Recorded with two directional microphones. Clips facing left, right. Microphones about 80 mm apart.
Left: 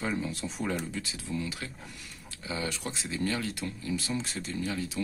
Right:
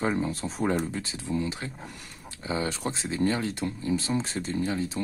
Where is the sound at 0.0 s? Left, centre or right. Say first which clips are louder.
Right 5 dB; right.